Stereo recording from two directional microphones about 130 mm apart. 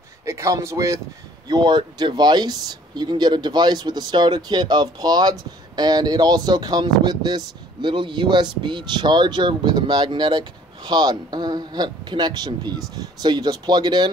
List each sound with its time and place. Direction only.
0.2 s speech: 20° right (ahead or behind)